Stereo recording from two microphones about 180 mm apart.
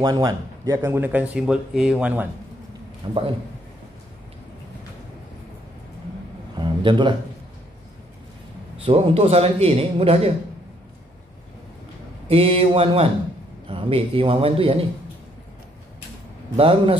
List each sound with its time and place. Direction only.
0.0 s speech: 20° right (ahead or behind); by 2.2 s 5° right (ahead or behind)
3.0 s speech: 25° right (ahead or behind)
6.5 s a sound: 25° right (ahead or behind)
8.8 s a man's voice: 35° right (ahead or behind)
12.3 s a man's voice: 30° right (ahead or behind)
16.5 s speech: 30° right (ahead or behind)